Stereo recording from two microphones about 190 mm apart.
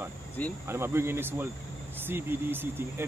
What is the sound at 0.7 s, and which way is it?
Speech, 15° right (ahead or behind).